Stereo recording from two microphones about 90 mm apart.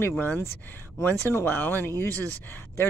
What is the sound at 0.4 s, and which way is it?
Speech, 25° left (ahead or behind).